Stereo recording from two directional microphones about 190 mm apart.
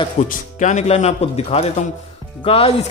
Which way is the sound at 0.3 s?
40° left (ahead or behind).